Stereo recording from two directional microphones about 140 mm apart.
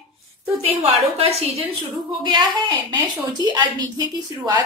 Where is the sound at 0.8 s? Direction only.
45° right (ahead or behind).